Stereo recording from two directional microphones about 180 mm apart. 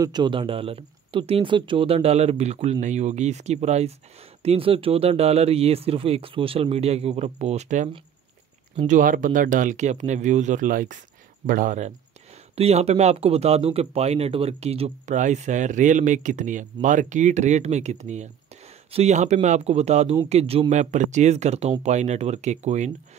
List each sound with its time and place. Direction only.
0.0 s speech: 25° right (ahead or behind); by 11.9 s 45° right (ahead or behind)
12.5 s speech: 35° right (ahead or behind)